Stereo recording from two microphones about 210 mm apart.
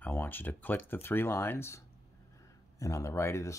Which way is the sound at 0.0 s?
10° left (ahead or behind).